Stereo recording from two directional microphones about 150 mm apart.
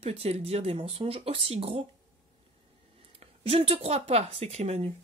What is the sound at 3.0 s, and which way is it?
Speech, 40° right (ahead or behind).